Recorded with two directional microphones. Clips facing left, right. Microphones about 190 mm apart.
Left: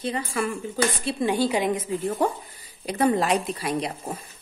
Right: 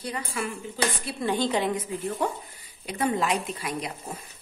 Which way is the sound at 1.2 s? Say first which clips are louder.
Left 2 dB; 10° left (ahead or behind).